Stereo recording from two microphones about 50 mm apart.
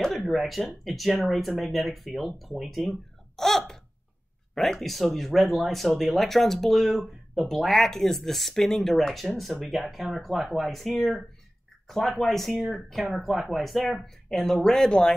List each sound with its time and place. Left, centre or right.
0.1 s speech: centre
2.9 s hiccup: centre
4.7 s speech: centre